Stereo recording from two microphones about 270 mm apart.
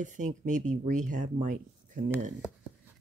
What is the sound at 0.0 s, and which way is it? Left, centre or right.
Speech, right.